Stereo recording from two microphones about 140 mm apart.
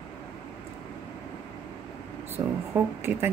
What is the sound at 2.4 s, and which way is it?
Speech, 20° right (ahead or behind).